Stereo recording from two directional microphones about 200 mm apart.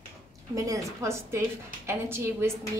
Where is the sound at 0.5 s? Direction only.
15° right (ahead or behind).